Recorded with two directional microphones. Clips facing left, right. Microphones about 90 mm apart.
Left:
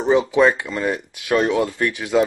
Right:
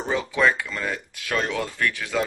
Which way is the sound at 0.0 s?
20° left (ahead or behind).